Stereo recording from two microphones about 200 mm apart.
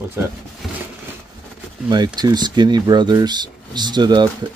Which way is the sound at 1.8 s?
20° right (ahead or behind).